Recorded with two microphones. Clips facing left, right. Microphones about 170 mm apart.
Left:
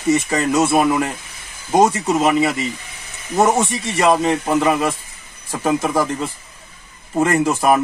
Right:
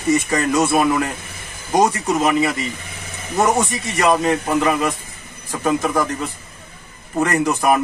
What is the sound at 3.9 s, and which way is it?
A man's voice, 5° left (ahead or behind).